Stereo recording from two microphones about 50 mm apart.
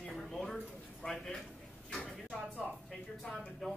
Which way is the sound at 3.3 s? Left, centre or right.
Left.